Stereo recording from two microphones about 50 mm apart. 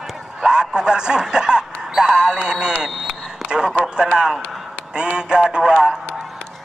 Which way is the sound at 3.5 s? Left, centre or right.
Centre.